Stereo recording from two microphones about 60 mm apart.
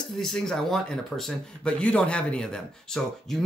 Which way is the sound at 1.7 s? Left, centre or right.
Left.